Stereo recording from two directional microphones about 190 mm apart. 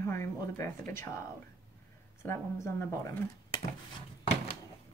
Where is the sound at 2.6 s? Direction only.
15° left (ahead or behind).